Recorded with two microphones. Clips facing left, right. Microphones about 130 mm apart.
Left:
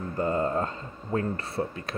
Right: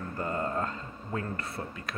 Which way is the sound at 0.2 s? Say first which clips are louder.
Left 5 dB; 25° left (ahead or behind).